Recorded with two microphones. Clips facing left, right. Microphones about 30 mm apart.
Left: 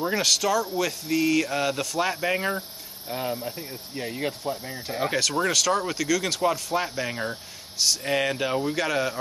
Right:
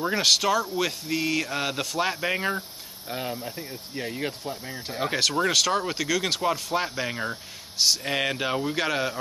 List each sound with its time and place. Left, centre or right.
0.0 s speech: centre